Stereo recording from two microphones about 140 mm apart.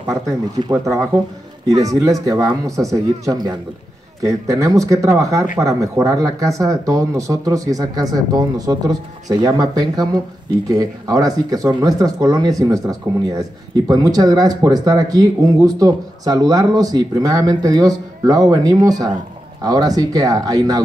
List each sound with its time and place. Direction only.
0.7 s speech: 20° right (ahead or behind)